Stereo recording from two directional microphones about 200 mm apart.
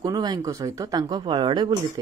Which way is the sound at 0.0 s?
20° right (ahead or behind).